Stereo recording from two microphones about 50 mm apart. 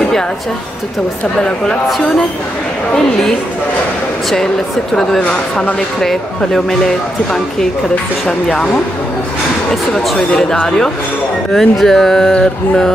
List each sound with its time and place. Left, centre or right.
5.3 s speech: left
6.4 s speech: centre
8.3 s speech: centre
10.0 s speech: centre